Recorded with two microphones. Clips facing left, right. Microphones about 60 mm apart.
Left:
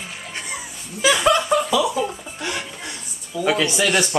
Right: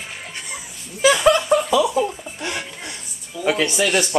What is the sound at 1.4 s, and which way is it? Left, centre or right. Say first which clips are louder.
Speech: right 1 dB; centre.